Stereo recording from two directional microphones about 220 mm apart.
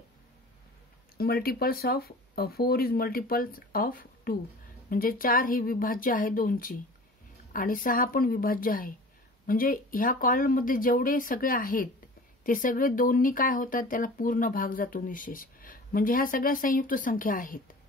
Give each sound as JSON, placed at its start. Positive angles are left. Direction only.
{"t": 1.1, "sound": "speech", "side_deg": 45}